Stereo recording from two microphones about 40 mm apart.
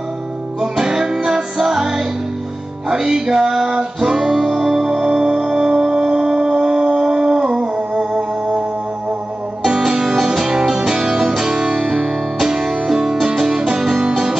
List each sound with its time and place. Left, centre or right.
0.6 s music: centre
9.7 s music: centre